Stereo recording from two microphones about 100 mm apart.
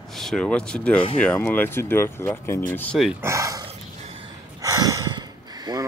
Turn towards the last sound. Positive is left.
turn(degrees=-40)  # may be behind; listen again after turning